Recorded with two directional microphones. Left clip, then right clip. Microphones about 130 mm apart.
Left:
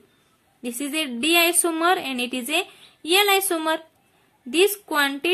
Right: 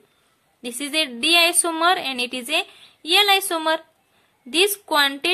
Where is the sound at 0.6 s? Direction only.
30° right (ahead or behind).